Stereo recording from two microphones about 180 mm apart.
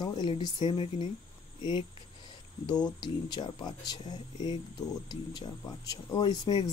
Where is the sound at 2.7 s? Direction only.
25° left (ahead or behind).